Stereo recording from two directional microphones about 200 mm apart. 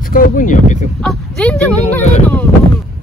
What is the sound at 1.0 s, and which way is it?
Speech, 5° left (ahead or behind).